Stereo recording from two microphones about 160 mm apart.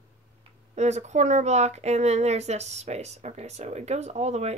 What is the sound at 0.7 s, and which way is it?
Speech, 45° right (ahead or behind).